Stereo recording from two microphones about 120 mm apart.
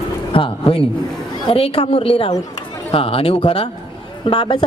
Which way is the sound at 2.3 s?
30° left (ahead or behind).